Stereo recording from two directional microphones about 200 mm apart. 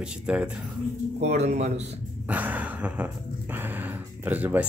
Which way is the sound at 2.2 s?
10° right (ahead or behind).